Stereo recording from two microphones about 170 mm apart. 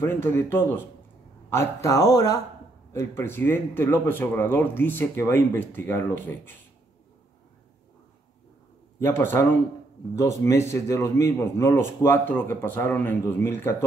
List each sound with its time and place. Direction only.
0.0 s a man's voice: 15° left (ahead or behind)
9.0 s speech: 15° left (ahead or behind)